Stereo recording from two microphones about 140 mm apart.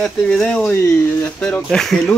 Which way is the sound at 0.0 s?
5° left (ahead or behind).